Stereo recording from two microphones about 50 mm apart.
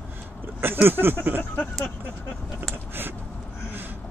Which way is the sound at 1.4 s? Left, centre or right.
Left.